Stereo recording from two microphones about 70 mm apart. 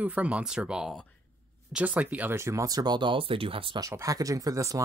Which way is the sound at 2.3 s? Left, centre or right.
Right.